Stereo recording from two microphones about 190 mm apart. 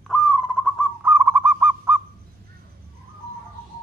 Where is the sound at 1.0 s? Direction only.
10° right (ahead or behind).